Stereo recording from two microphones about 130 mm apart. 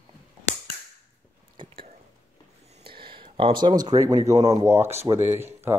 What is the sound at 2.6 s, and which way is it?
Speech, 50° right (ahead or behind).